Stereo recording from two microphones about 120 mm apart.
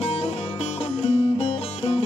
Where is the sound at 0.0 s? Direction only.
55° left (ahead or behind).